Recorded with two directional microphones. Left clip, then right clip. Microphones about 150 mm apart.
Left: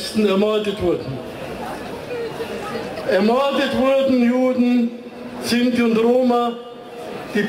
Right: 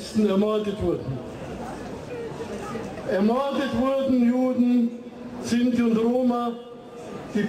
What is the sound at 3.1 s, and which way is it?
A man's voice, 25° left (ahead or behind).